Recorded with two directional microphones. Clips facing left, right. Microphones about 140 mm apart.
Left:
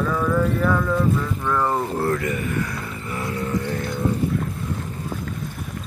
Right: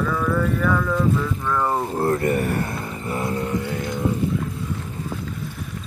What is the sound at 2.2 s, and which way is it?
Speech, 35° right (ahead or behind).